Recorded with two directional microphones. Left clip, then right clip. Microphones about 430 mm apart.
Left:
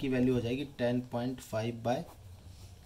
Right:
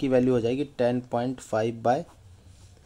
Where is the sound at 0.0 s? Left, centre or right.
Centre.